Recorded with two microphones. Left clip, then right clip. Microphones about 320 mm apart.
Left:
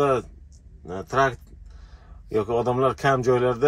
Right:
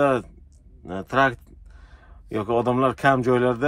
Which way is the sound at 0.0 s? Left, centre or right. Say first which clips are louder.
Right 1 dB; right.